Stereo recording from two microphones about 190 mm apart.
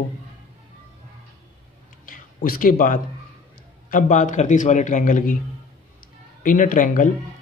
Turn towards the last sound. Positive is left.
turn(degrees=45)  # may be behind; listen again after turning